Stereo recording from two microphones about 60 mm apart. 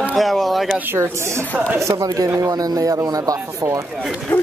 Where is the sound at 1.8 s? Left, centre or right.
Right.